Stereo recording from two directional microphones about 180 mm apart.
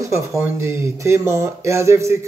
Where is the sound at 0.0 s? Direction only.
15° right (ahead or behind).